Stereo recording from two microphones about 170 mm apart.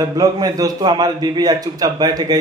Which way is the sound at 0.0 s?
20° right (ahead or behind).